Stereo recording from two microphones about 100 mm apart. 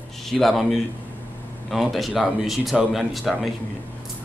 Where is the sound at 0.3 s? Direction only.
Centre (ahead or behind).